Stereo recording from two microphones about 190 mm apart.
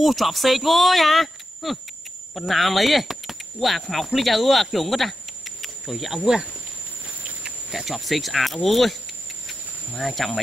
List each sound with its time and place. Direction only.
0.0 s speech: centre (ahead or behind)
7.4 s speech: centre (ahead or behind)
9.5 s cricket: centre (ahead or behind)